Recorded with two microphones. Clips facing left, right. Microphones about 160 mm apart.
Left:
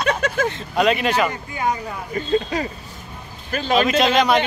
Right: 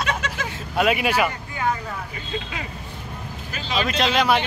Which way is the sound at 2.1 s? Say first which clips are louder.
Left 10 dB; 40° left (ahead or behind).